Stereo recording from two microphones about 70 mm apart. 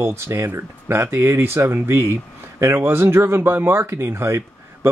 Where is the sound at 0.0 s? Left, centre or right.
Right.